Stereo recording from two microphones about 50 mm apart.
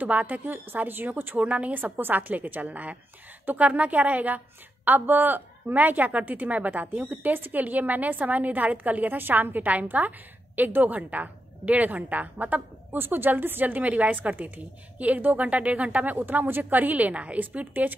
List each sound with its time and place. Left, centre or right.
0.0 s a woman's voice: right
7.3 s a woman's voice: right
7.6 s a woman's voice: right
12.9 s a woman's voice: right